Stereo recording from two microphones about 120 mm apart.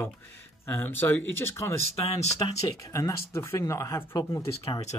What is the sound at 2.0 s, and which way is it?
Speech, 60° left (ahead or behind).